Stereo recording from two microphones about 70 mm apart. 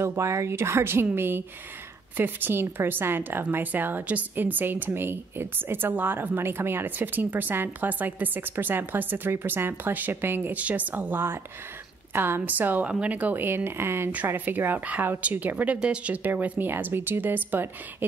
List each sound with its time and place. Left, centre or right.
0.0 s a woman's voice: right
10.6 s a woman's voice: right